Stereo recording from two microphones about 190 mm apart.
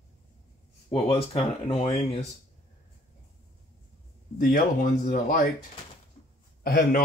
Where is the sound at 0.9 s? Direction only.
30° left (ahead or behind).